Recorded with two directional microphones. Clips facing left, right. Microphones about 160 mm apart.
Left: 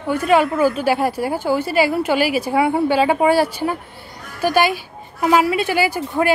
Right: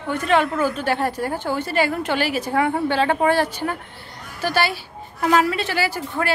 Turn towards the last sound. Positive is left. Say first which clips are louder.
# left 5 dB
turn(degrees=15)  # may be behind; listen again after turning